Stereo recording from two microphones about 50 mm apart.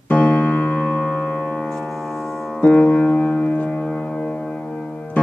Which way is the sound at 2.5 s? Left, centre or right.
Left.